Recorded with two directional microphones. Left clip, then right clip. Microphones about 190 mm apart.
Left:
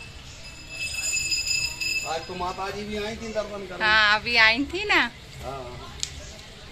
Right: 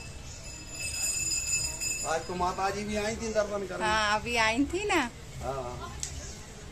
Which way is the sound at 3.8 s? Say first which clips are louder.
Left 8 dB; centre (ahead or behind).